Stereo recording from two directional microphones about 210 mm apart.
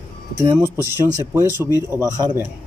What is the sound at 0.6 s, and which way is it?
Speech, 10° right (ahead or behind).